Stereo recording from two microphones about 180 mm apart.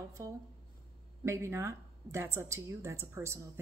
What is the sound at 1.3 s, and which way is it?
A woman's voice, 15° right (ahead or behind).